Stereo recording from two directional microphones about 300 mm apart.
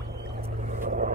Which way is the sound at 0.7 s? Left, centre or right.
Right.